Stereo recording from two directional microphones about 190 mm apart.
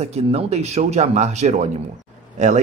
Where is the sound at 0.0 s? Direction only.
35° right (ahead or behind).